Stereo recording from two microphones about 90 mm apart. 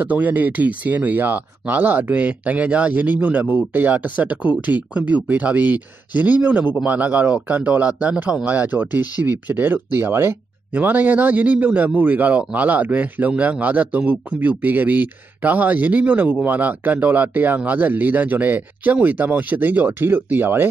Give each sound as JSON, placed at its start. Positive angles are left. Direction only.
{"t": 0.0, "sound": "a man's voice", "side_deg": -15}